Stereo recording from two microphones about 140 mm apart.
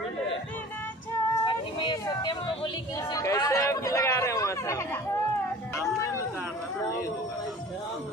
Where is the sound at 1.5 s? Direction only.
35° left (ahead or behind).